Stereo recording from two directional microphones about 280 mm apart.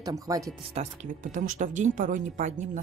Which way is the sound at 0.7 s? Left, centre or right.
Right.